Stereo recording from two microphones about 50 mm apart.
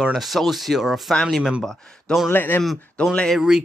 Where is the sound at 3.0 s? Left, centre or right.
Left.